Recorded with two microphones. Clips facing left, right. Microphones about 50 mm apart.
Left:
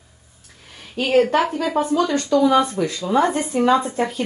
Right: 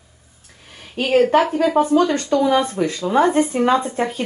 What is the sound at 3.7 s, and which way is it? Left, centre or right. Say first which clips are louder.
Speech: even; centre.